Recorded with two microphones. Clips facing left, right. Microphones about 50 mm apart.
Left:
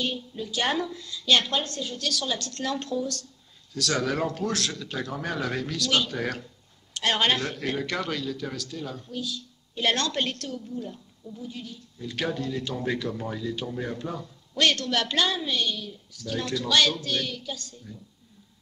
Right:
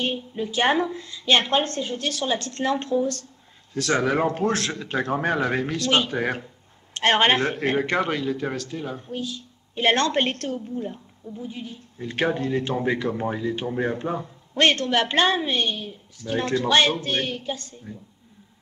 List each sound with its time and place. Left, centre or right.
0.0 s a man's voice: right